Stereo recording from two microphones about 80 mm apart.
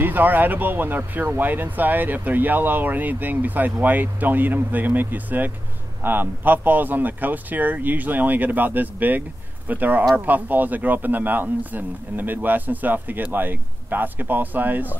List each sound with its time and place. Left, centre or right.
0.0 s speech: right